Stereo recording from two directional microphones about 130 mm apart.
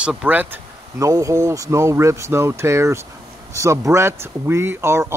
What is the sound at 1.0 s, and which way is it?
Speech, 25° right (ahead or behind).